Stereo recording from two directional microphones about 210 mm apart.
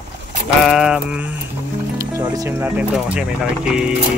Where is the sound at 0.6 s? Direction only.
Centre (ahead or behind).